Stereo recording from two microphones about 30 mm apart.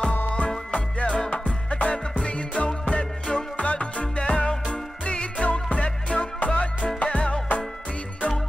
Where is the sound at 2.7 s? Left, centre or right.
Left.